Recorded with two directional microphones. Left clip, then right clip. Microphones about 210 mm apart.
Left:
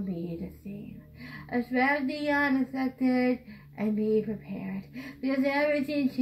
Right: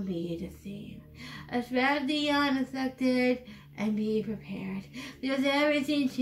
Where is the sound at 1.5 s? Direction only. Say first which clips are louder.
Left 1 dB; 5° right (ahead or behind).